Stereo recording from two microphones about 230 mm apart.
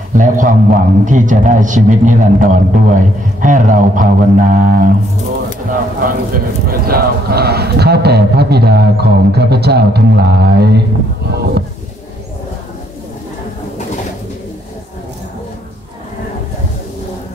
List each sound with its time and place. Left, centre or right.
0.1 s a man's voice: right